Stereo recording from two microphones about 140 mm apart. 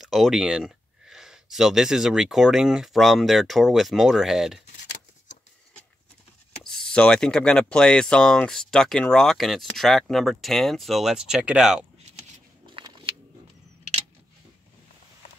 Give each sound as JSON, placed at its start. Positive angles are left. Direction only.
{"t": 0.0, "sound": "speech", "side_deg": 0}
{"t": 6.6, "sound": "speech", "side_deg": 5}
{"t": 12.6, "sound": "a sound", "side_deg": -35}